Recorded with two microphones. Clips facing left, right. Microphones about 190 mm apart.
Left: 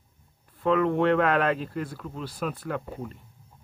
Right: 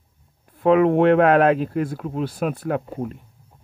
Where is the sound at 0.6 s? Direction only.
60° right (ahead or behind).